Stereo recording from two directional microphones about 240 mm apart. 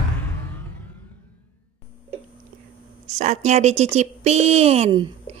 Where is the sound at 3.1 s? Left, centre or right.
Right.